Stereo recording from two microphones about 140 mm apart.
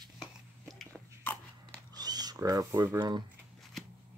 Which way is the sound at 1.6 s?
30° right (ahead or behind).